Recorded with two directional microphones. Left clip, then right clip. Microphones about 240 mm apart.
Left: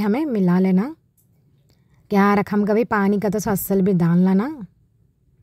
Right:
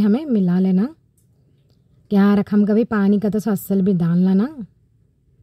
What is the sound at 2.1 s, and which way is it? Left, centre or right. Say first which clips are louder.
A woman's voice: left 1 dB; left.